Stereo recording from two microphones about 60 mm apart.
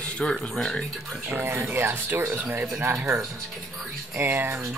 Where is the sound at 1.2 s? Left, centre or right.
Right.